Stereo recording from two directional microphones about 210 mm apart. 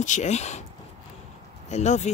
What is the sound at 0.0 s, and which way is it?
Speech, 35° left (ahead or behind).